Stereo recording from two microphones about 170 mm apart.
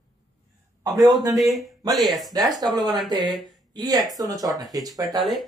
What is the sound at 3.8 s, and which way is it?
Speech, 20° right (ahead or behind).